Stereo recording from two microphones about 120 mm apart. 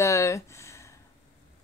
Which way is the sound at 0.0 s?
25° left (ahead or behind).